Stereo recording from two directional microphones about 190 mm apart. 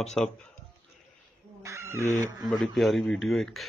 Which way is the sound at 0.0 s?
Centre (ahead or behind).